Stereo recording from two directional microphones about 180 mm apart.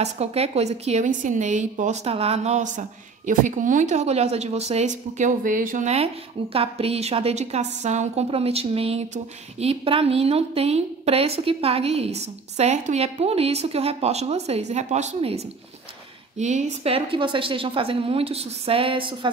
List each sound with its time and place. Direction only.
0.0 s a woman's voice: 35° right (ahead or behind)